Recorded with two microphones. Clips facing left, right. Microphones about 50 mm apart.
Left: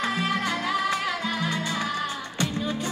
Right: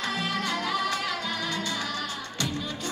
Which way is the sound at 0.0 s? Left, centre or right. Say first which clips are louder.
Left 3 dB; left.